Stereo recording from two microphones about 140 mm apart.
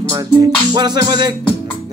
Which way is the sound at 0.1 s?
30° right (ahead or behind).